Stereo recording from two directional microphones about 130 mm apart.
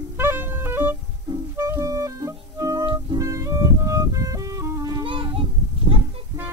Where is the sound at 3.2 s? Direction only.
25° right (ahead or behind).